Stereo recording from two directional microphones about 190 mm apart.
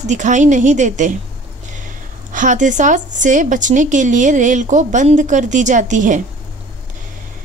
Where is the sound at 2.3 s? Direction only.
40° right (ahead or behind).